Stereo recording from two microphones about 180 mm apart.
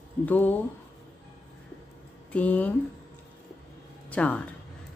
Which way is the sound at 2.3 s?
10° left (ahead or behind).